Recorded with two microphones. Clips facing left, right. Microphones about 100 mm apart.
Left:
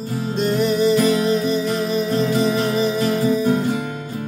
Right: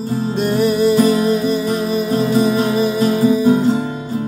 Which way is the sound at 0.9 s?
50° right (ahead or behind).